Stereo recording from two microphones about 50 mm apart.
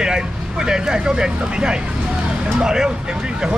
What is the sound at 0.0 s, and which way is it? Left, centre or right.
Speech, centre.